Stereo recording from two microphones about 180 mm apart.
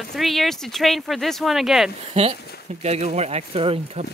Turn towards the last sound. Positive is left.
turn(degrees=-35)  # may be behind; listen again after turning